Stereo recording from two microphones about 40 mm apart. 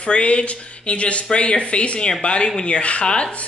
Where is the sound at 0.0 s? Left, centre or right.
Left.